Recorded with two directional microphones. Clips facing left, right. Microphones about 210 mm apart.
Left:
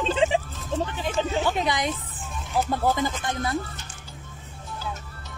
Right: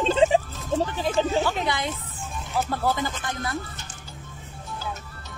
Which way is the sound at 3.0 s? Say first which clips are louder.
Left 3 dB; 20° left (ahead or behind).